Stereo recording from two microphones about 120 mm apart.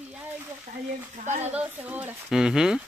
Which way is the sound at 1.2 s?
75° right (ahead or behind).